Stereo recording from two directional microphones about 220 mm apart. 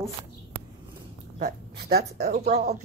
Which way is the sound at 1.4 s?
45° right (ahead or behind).